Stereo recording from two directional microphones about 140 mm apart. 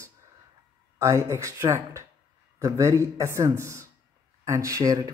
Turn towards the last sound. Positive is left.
turn(degrees=-25)  # may be behind; listen again after turning